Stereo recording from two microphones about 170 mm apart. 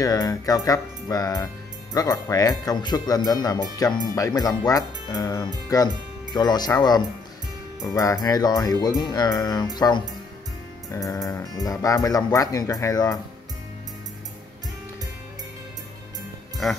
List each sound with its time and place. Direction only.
0.0 s speech: 20° left (ahead or behind)
10.9 s music: 20° left (ahead or behind)
11.6 s speech: 20° left (ahead or behind)